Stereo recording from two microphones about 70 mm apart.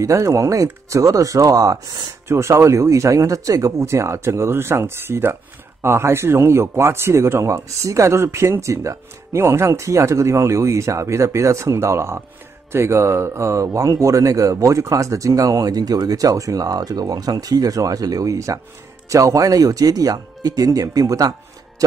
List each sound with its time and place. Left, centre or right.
0.0 s speech: right
2.2 s speech: right